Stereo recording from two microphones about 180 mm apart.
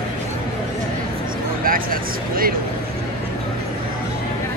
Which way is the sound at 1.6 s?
50° right (ahead or behind).